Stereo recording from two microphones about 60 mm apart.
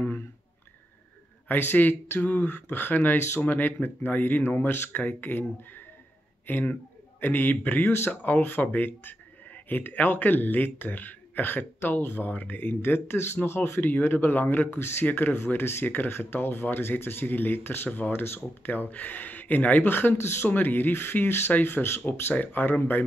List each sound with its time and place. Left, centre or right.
1.5 s speech: left